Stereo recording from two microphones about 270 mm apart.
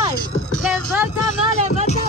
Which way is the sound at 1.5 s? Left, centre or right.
Left.